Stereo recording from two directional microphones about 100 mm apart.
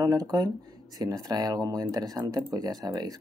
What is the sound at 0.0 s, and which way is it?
Speech, 40° right (ahead or behind).